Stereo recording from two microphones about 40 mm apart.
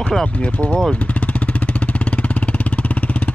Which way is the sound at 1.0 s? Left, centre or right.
Left.